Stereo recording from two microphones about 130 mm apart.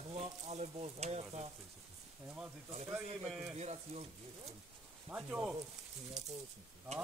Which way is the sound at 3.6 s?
55° right (ahead or behind).